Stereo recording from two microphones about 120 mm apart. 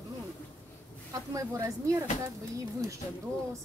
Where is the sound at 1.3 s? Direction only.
25° right (ahead or behind).